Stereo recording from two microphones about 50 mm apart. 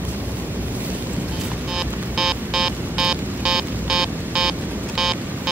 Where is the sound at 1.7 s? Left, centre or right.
Centre.